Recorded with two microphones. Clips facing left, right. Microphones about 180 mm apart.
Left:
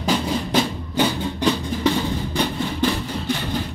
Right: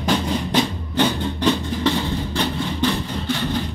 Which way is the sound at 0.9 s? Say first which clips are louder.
Right 1 dB; 10° left (ahead or behind).